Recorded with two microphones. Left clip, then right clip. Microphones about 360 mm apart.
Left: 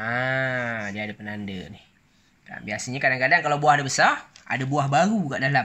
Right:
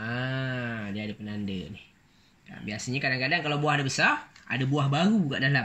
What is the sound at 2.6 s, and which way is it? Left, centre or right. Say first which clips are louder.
Speech: left 6 dB; centre.